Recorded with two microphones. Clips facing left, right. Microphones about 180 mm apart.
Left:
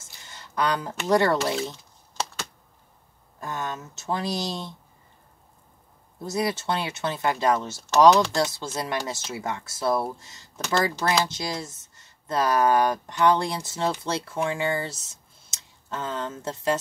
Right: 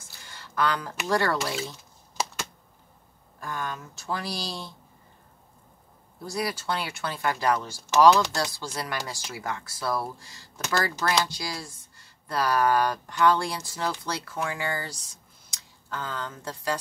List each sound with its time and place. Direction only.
0.0 s a sound: 20° left (ahead or behind)
1.0 s speech: 20° left (ahead or behind)
3.3 s speech: 20° left (ahead or behind)
6.2 s speech: 25° left (ahead or behind)